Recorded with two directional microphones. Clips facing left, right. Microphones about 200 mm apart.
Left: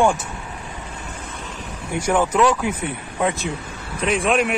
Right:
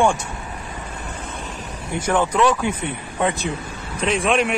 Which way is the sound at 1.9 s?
10° left (ahead or behind).